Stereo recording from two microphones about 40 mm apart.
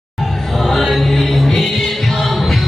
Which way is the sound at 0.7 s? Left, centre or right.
Centre.